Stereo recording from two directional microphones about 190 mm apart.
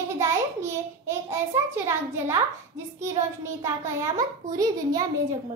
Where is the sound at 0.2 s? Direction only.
15° right (ahead or behind).